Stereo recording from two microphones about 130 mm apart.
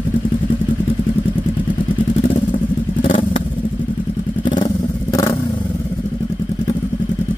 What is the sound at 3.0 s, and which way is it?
Vehicle, 40° left (ahead or behind).